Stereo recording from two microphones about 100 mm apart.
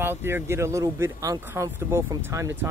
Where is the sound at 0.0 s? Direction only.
25° right (ahead or behind).